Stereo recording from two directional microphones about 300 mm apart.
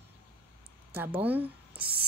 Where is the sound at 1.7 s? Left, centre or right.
Right.